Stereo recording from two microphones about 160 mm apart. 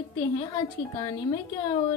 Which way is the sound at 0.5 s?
25° left (ahead or behind).